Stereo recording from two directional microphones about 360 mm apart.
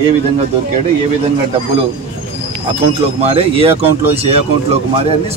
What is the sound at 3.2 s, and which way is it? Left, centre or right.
Speech, centre.